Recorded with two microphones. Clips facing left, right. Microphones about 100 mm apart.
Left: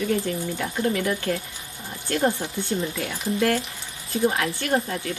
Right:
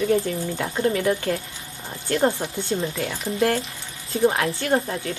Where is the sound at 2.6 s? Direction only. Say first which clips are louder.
Right 2 dB; 30° right (ahead or behind).